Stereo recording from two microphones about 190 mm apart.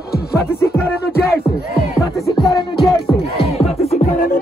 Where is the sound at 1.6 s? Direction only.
55° left (ahead or behind).